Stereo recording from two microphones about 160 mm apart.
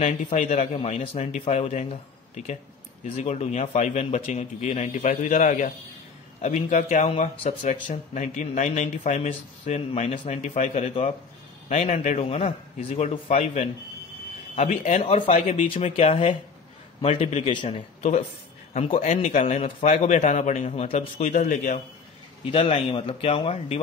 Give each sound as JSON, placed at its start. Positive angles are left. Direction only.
{"t": 0.0, "sound": "a man's voice", "side_deg": 45}
{"t": 17.6, "sound": "a man's voice", "side_deg": 45}
{"t": 21.2, "sound": "speech", "side_deg": 55}
{"t": 22.5, "sound": "a man's voice", "side_deg": 35}